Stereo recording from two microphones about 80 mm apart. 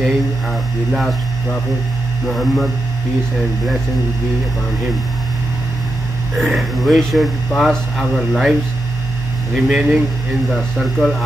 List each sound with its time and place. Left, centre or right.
0.0 s speech: centre
6.3 s speech: centre
9.7 s speech: centre
10.5 s speech: centre